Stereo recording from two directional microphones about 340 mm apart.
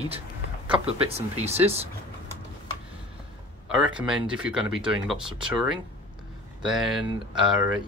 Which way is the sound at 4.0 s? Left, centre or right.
Centre.